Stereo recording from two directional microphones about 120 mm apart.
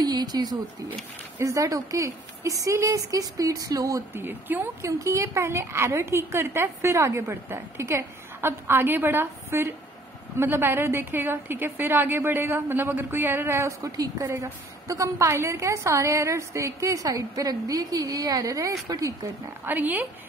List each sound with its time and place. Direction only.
0.0 s speech: 35° right (ahead or behind)
4.1 s a woman's voice: 15° right (ahead or behind)
19.6 s a woman's voice: 15° right (ahead or behind)